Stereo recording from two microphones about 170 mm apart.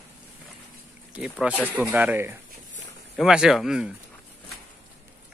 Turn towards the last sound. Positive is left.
turn(degrees=0)  # may be behind; listen again after turning